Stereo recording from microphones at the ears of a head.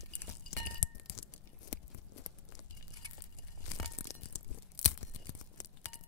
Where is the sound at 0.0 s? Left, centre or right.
Left.